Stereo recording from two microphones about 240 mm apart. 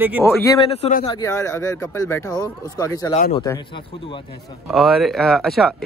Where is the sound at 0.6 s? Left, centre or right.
Left.